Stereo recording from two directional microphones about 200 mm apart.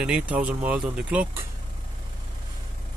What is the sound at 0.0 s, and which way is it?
Speech, 5° right (ahead or behind).